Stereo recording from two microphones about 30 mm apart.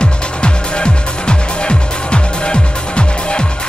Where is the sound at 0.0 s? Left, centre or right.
Left.